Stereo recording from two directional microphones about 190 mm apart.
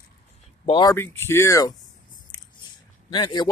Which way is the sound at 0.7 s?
25° left (ahead or behind).